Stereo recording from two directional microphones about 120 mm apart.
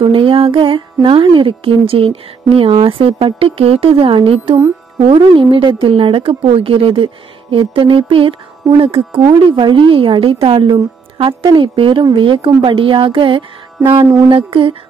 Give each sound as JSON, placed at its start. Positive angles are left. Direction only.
{"t": 0.0, "sound": "a woman's voice", "side_deg": -45}